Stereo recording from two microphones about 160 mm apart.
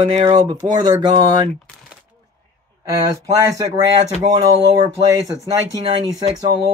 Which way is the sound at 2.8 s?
20° right (ahead or behind).